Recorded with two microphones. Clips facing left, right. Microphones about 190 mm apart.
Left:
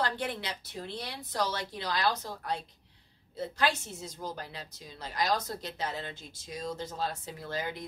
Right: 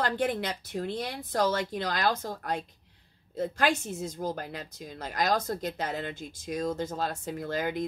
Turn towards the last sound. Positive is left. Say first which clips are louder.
# right 6 dB
turn(degrees=-50)  # may be behind; listen again after turning